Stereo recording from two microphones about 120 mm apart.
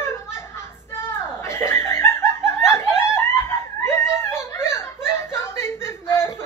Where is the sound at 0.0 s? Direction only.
20° left (ahead or behind).